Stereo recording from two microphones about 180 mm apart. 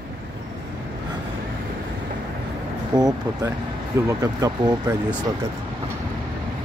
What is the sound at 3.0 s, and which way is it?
Speech, 20° right (ahead or behind).